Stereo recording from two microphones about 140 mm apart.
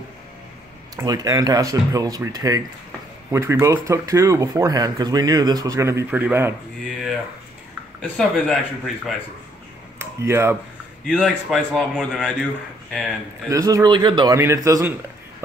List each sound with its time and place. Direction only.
0.9 s speech: 25° right (ahead or behind)
8.2 s a man's voice: centre (ahead or behind)
9.9 s speech: 15° right (ahead or behind)
11.1 s a man's voice: 5° left (ahead or behind)
13.5 s speech: 25° right (ahead or behind)
14.3 s speech: 20° right (ahead or behind)